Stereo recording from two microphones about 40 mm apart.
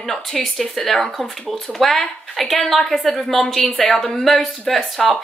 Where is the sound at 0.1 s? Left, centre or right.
Centre.